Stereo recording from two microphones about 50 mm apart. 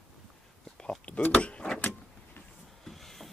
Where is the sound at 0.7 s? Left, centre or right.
Left.